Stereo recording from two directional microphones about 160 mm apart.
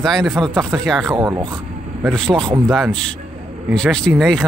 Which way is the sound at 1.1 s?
25° right (ahead or behind).